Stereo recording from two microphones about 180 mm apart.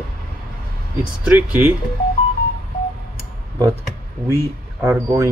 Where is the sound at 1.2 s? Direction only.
10° right (ahead or behind).